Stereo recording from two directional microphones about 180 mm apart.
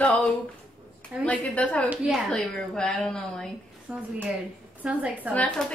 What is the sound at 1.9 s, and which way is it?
A woman's voice, centre (ahead or behind).